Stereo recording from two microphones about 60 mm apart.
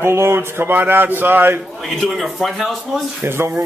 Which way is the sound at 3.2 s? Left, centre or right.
Right.